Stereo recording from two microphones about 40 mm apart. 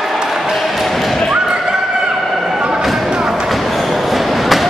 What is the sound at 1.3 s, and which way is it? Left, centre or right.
Thump, centre.